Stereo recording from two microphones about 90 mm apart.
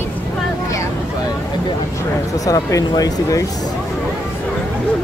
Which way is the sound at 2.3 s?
40° left (ahead or behind).